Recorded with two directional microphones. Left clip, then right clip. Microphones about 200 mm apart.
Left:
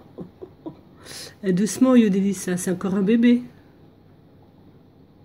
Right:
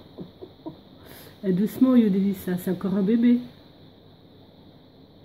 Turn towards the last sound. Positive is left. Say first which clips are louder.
# left 3 dB
turn(degrees=5)  # may be behind; listen again after turning